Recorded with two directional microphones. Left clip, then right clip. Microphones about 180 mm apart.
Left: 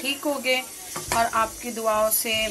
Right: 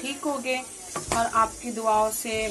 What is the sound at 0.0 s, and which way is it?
Speech, 5° left (ahead or behind).